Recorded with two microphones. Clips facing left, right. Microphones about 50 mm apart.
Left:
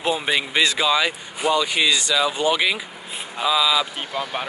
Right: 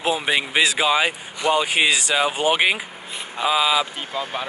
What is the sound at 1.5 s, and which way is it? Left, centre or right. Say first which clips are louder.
Speech: right 1 dB; right.